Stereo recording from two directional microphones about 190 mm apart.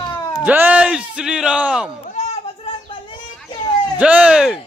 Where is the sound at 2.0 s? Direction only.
40° left (ahead or behind).